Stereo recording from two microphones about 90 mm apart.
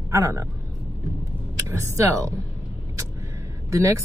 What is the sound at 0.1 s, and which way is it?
Speech, 35° right (ahead or behind).